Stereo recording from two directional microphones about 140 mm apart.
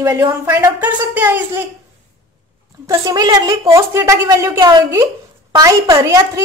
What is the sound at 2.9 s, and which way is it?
A woman's voice, 25° right (ahead or behind).